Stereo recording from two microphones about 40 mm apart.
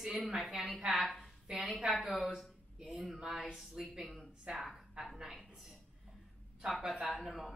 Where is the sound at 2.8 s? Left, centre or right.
Right.